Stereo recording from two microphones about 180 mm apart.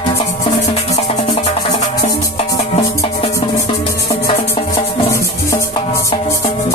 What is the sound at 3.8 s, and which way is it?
Music, 30° left (ahead or behind).